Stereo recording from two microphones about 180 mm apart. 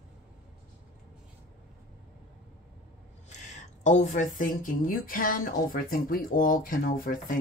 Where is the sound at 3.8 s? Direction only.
45° left (ahead or behind).